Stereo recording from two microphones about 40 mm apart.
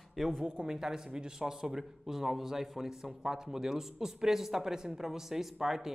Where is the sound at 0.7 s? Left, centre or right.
Centre.